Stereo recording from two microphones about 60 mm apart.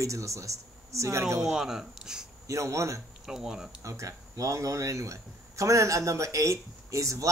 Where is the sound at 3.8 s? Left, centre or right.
Right.